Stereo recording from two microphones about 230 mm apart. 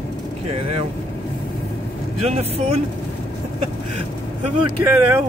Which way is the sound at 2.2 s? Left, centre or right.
Right.